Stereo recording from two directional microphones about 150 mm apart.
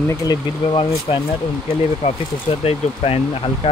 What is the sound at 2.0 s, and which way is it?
Speech, 45° left (ahead or behind).